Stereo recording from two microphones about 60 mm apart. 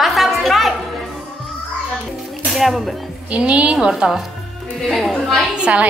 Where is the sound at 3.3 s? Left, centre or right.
Right.